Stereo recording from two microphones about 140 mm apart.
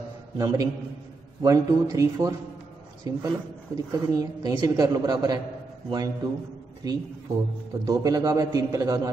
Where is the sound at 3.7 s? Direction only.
25° right (ahead or behind).